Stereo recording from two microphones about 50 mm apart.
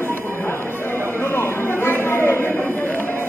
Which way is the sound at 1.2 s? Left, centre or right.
Left.